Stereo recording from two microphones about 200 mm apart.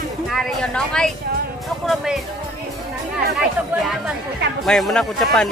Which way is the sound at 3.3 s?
Centre (ahead or behind).